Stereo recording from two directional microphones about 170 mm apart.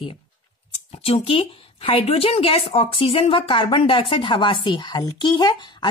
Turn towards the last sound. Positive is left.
turn(degrees=25)  # may be behind; listen again after turning